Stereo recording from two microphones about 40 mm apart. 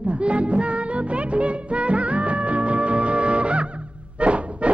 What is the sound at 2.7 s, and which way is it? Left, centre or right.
Music, right.